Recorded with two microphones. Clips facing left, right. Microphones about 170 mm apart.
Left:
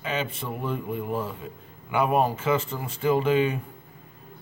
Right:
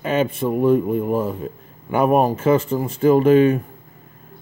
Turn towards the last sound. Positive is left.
turn(degrees=-50)  # may be behind; listen again after turning